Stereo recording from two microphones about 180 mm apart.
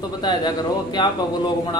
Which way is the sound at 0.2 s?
25° left (ahead or behind).